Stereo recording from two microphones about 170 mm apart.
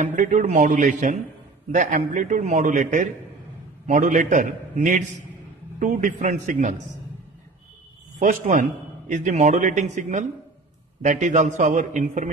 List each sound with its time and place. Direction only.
0.0 s a man's voice: 45° right (ahead or behind)
8.2 s a man's voice: 50° right (ahead or behind)